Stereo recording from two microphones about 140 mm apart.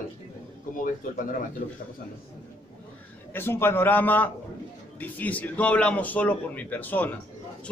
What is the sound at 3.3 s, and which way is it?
A man's voice, 15° left (ahead or behind).